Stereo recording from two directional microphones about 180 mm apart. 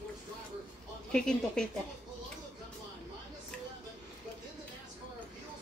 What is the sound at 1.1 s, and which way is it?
Speech, 5° left (ahead or behind).